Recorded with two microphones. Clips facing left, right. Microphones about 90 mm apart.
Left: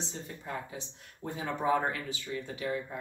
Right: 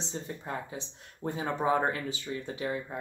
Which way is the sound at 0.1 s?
25° right (ahead or behind).